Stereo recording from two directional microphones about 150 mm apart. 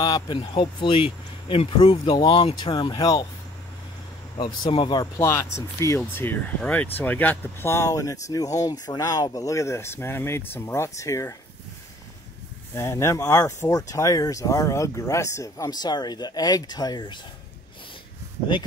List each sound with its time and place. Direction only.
0.0 s speech: 30° left (ahead or behind)
4.4 s speech: 30° left (ahead or behind)
5.2 s speech: 20° left (ahead or behind)
12.7 s speech: 20° left (ahead or behind)